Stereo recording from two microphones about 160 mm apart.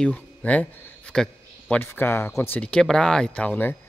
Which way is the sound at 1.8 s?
15° left (ahead or behind).